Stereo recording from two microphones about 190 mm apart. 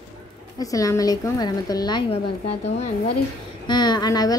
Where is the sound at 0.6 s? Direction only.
20° left (ahead or behind).